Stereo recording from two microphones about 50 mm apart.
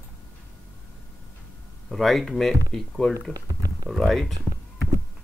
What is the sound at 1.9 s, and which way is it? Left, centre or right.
Speech, centre.